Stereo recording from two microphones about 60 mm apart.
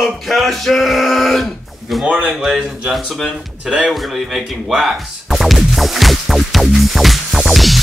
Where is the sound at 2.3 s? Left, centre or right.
Centre.